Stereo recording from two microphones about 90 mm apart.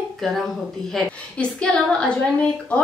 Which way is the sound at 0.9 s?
10° left (ahead or behind).